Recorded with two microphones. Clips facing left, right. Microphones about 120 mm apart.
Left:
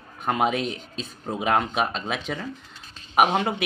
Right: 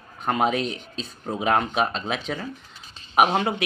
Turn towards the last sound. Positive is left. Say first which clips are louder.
# right 1 dB
turn(degrees=0)  # may be behind; listen again after turning